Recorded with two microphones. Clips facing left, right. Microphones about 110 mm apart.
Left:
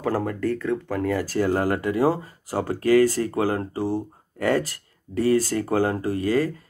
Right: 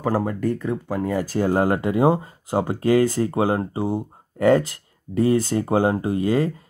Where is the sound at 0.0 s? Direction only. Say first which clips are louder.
Right 2 dB; 15° right (ahead or behind).